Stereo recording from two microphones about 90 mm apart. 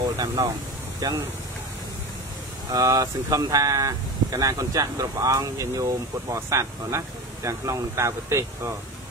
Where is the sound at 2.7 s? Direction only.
40° right (ahead or behind).